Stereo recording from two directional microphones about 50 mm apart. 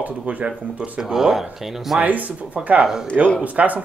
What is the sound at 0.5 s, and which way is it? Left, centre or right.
Speech, centre.